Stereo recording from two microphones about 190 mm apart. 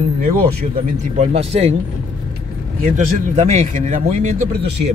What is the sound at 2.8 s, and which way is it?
Speech, 40° right (ahead or behind).